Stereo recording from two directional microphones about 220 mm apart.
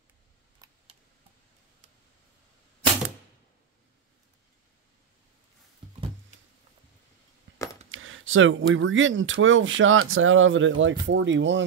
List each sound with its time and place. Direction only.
7.9 s speech: 65° right (ahead or behind)